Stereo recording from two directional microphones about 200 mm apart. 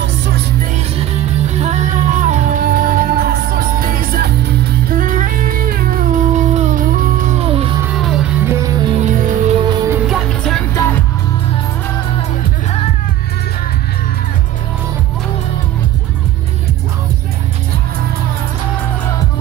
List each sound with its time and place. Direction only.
0.9 s music: 30° right (ahead or behind)
7.8 s music: centre (ahead or behind)
8.5 s music: 15° right (ahead or behind)
8.9 s music: 40° right (ahead or behind)
9.7 s music: 10° right (ahead or behind)
10.0 s music: centre (ahead or behind)